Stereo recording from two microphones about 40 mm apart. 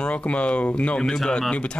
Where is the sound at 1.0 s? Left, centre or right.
Centre.